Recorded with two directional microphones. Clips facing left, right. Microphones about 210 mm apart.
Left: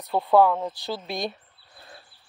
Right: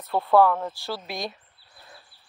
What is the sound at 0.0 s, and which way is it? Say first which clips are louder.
Speech: even; 15° left (ahead or behind).